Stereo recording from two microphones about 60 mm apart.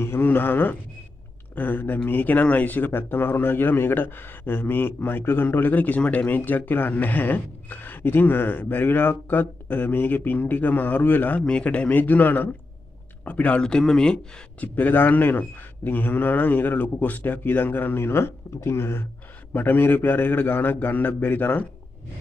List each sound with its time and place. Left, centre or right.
0.0 s a man's voice: left
13.6 s speech: centre
14.6 s speech: left
19.5 s speech: left